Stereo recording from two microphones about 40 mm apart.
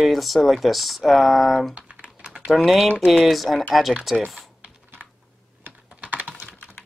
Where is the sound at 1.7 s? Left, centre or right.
Right.